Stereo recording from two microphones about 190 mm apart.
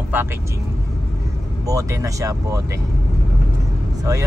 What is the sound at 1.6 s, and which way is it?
Speech, 15° right (ahead or behind).